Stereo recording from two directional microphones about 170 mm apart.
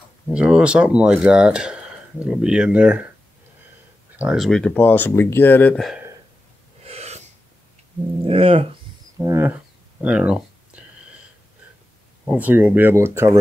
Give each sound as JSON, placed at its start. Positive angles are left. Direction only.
{"t": 0.3, "sound": "speech", "side_deg": -5}
{"t": 4.2, "sound": "speech", "side_deg": -5}
{"t": 6.8, "sound": "snort", "side_deg": -40}
{"t": 8.3, "sound": "speech", "side_deg": -35}
{"t": 9.2, "sound": "speech", "side_deg": -15}
{"t": 10.0, "sound": "a sound", "side_deg": -5}
{"t": 12.3, "sound": "speech", "side_deg": -10}